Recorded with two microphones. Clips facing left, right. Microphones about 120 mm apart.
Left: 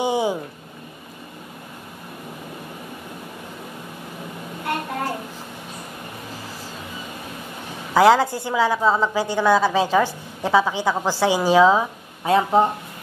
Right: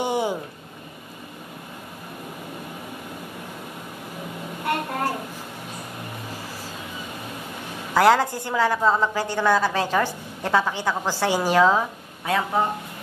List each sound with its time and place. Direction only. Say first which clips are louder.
0.0 s a sound: left 3 dB; 15° left (ahead or behind)
7.9 s a woman's voice: left 3 dB; 10° left (ahead or behind)
12.3 s speech: left 6 dB; 25° left (ahead or behind)